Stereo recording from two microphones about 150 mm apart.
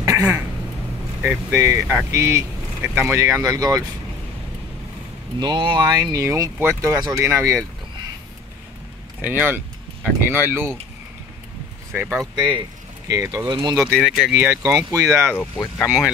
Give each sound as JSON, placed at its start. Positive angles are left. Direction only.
{"t": 0.0, "sound": "a sound", "side_deg": -20}
{"t": 1.2, "sound": "speech", "side_deg": -15}
{"t": 5.4, "sound": "speech", "side_deg": -30}
{"t": 9.2, "sound": "speech", "side_deg": -10}
{"t": 11.9, "sound": "speech", "side_deg": -15}
{"t": 12.4, "sound": "speech", "side_deg": -35}
{"t": 13.1, "sound": "speech", "side_deg": -20}
{"t": 13.7, "sound": "speech", "side_deg": 0}
{"t": 14.3, "sound": "speech", "side_deg": -15}
{"t": 15.3, "sound": "speech", "side_deg": 15}